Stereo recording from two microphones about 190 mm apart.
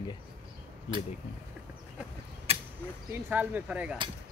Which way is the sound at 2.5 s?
30° right (ahead or behind).